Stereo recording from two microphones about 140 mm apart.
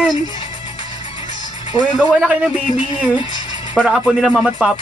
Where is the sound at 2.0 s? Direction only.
Centre (ahead or behind).